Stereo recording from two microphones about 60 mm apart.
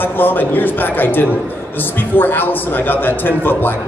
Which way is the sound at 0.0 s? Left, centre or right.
Left.